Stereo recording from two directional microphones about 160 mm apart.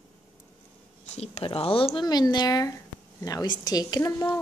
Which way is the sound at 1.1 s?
40° left (ahead or behind).